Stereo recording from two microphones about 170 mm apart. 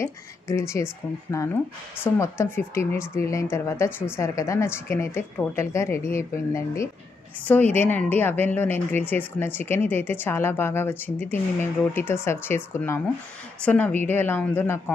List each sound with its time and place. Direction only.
0.0 s a woman's voice: 15° left (ahead or behind)